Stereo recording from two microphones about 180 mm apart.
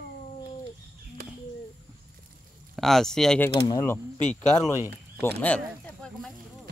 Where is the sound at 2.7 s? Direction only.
Centre (ahead or behind).